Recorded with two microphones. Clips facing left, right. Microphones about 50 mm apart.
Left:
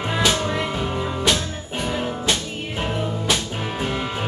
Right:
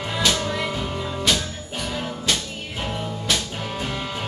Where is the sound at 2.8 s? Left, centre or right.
Centre.